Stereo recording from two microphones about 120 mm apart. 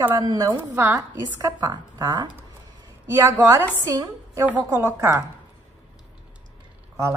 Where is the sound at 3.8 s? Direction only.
30° right (ahead or behind).